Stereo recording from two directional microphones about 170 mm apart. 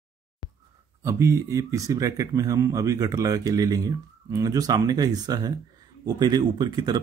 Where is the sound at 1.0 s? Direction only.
15° right (ahead or behind).